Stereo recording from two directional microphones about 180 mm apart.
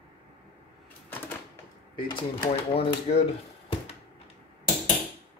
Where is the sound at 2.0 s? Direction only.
25° left (ahead or behind).